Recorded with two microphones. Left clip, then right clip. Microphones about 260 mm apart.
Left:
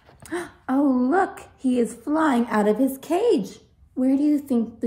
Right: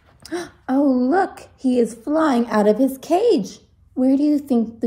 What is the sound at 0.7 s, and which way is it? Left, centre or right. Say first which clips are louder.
A woman's voice: right 3 dB; centre.